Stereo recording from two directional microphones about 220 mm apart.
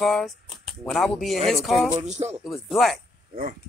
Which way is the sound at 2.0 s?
30° right (ahead or behind).